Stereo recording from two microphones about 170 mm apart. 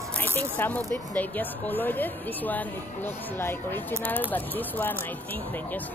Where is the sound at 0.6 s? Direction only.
10° left (ahead or behind).